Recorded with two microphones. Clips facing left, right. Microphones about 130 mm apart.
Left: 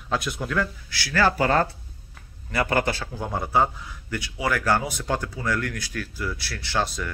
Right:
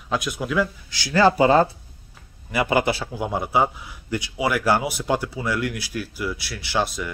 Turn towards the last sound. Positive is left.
turn(degrees=-5)  # may be behind; listen again after turning